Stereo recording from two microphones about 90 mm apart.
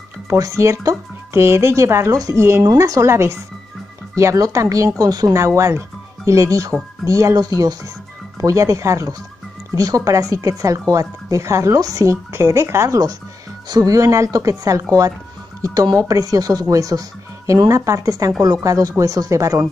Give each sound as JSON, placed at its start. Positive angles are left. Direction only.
{"t": 0.3, "sound": "speech", "side_deg": -35}